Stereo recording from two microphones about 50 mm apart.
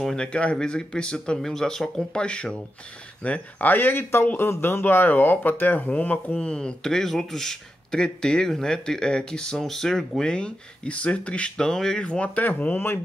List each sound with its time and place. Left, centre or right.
0.1 s speech: centre
1.4 s speech: centre
3.3 s speech: left
5.9 s speech: left
6.3 s speech: centre
12.1 s speech: left
12.7 s speech: left